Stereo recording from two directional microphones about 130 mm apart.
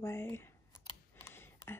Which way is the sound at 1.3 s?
15° left (ahead or behind).